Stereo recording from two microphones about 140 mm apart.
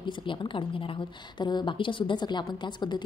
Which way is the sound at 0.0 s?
35° left (ahead or behind).